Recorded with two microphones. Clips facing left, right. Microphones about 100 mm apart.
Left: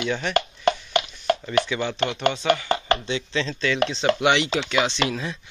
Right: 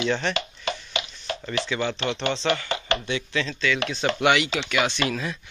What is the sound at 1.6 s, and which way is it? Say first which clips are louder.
Speech: left 3 dB; 15° left (ahead or behind).